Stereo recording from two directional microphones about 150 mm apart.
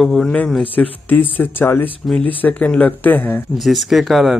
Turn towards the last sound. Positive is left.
turn(degrees=0)  # may be behind; listen again after turning